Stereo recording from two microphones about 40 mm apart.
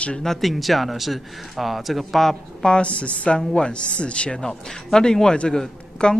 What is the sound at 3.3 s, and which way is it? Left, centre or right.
A man's voice, centre.